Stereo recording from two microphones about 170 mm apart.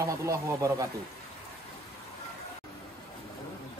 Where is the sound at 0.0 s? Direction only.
20° right (ahead or behind).